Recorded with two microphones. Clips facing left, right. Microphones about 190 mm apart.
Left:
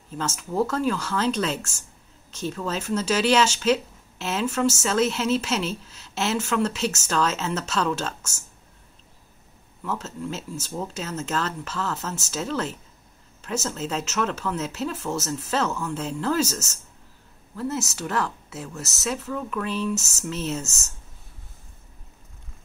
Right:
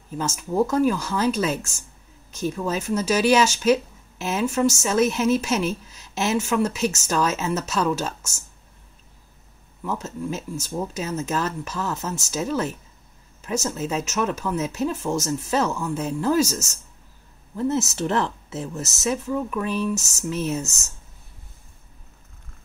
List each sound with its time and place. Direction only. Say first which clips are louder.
0.4 s speech: right 5 dB; 15° right (ahead or behind)
9.8 s speech: right 2 dB; 10° right (ahead or behind)
17.6 s speech: right 5 dB; 20° right (ahead or behind)